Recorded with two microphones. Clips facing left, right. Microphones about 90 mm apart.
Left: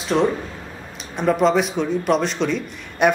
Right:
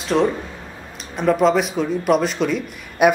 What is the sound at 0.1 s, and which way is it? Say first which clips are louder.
Speech: right 1 dB; 5° left (ahead or behind).